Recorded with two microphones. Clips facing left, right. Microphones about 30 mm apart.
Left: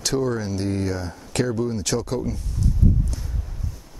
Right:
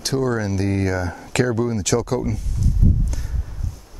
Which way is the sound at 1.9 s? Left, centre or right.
Right.